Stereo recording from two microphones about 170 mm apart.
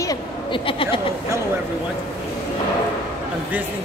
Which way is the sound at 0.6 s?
30° left (ahead or behind).